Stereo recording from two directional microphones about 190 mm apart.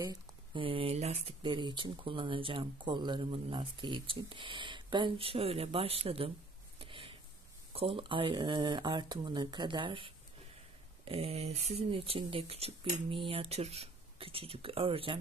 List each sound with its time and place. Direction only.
0.0 s speech: 25° right (ahead or behind)
6.8 s a sound: 30° right (ahead or behind)
7.7 s speech: 30° right (ahead or behind)